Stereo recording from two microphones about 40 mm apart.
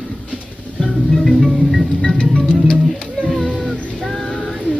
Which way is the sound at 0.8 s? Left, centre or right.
Centre.